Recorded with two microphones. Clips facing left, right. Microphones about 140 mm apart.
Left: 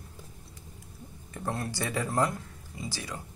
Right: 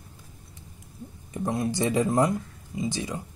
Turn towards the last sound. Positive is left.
turn(degrees=-20)  # may be behind; listen again after turning